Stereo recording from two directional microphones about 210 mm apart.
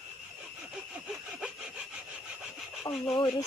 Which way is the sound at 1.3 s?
5° right (ahead or behind).